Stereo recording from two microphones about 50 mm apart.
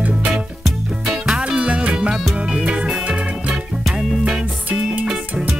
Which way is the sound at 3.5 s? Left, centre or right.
Centre.